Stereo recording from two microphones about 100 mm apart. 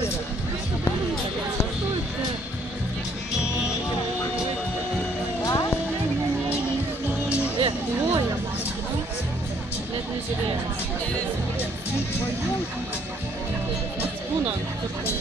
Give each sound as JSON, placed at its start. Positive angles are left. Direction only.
{"t": 5.4, "sound": "music", "side_deg": 35}
{"t": 7.5, "sound": "music", "side_deg": -60}